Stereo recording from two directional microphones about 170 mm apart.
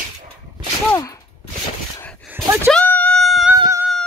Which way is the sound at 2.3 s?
5° right (ahead or behind).